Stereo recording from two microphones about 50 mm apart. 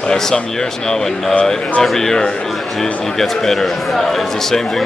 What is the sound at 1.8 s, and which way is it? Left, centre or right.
A man's voice, centre.